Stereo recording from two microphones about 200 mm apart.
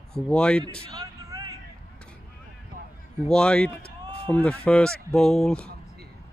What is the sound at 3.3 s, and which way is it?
Speech, 5° left (ahead or behind).